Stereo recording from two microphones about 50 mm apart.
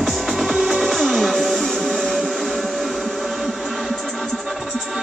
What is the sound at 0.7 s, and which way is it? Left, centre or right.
Music, centre.